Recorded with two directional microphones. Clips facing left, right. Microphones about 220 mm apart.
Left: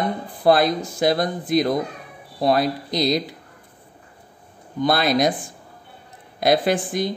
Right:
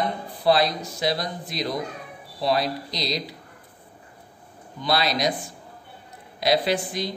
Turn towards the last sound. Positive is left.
turn(degrees=50)  # may be behind; listen again after turning